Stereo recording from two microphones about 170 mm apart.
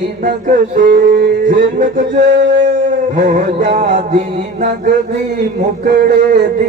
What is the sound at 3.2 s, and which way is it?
Speech, 50° right (ahead or behind).